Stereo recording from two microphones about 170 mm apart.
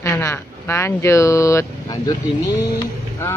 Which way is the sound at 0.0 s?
15° left (ahead or behind).